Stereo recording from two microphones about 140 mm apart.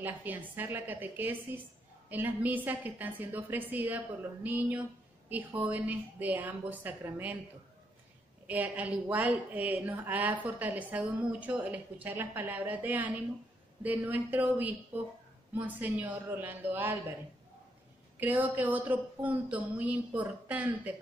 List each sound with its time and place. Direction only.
0.0 s a woman's voice: 15° right (ahead or behind)
8.5 s a woman's voice: 10° right (ahead or behind)
18.2 s a woman's voice: 15° right (ahead or behind)